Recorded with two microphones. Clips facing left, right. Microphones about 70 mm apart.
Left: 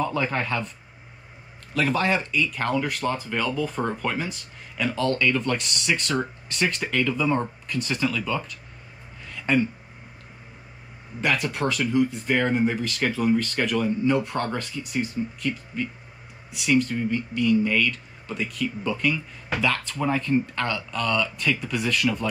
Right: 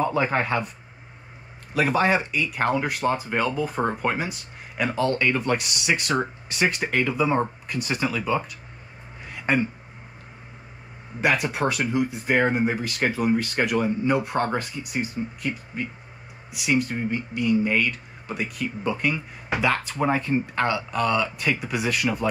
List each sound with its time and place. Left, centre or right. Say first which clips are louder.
0.0 s speech: right 3 dB; centre
1.7 s speech: right 2 dB; centre
9.2 s a sound: left 1 dB; centre
11.1 s speech: right 2 dB; centre
16.5 s speech: left 2 dB; centre